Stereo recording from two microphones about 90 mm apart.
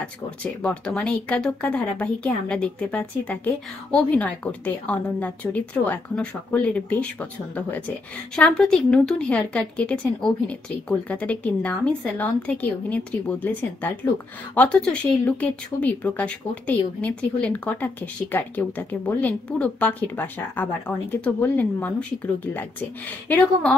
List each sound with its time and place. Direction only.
0.0 s speech: 15° left (ahead or behind)